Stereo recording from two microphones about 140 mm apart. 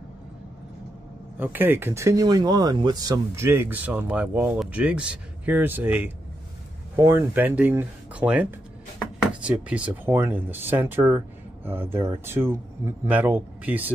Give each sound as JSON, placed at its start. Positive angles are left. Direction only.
{"t": 1.4, "sound": "speech", "side_deg": -15}